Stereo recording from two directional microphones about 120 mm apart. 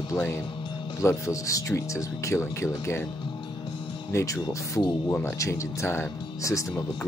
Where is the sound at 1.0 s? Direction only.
25° left (ahead or behind).